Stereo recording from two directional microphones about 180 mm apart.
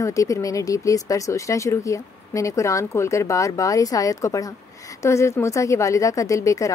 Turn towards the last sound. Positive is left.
turn(degrees=15)  # may be behind; listen again after turning